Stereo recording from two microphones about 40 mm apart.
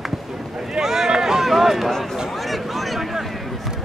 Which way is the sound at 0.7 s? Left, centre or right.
Centre.